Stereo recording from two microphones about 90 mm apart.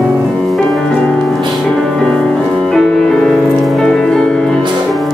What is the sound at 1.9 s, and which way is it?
Music, 10° left (ahead or behind).